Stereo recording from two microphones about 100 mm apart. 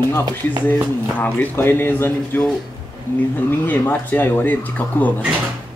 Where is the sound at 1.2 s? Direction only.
20° left (ahead or behind).